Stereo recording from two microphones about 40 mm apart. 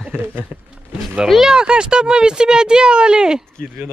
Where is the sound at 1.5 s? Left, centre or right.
Right.